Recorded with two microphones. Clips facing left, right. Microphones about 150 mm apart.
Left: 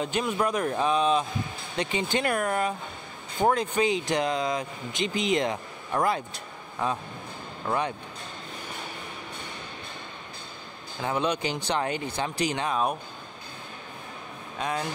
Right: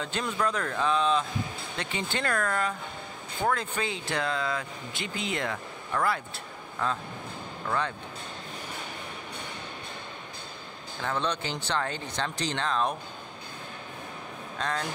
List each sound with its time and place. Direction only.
0.3 s speech: 15° left (ahead or behind)
11.0 s speech: 15° left (ahead or behind)
14.6 s speech: 10° left (ahead or behind)